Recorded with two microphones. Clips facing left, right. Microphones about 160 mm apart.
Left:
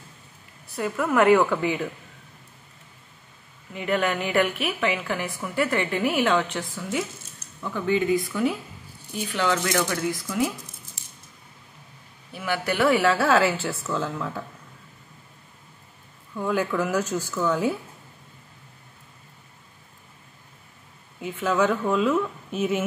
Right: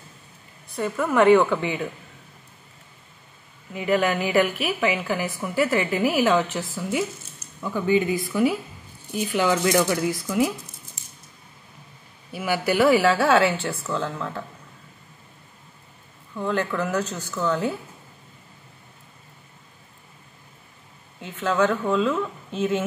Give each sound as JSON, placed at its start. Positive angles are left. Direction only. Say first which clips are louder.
{"t": 0.7, "sound": "a woman's voice", "louder": "right 1 dB", "side_deg": 0}
{"t": 3.7, "sound": "a woman's voice", "louder": "right 3 dB", "side_deg": -5}
{"t": 12.3, "sound": "a woman's voice", "louder": "right 3 dB", "side_deg": -5}
{"t": 16.3, "sound": "speech", "louder": "even", "side_deg": 10}
{"t": 21.2, "sound": "speech", "louder": "right 1 dB", "side_deg": 10}